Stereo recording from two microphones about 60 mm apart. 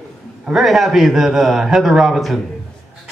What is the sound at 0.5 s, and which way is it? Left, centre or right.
A man's voice, centre.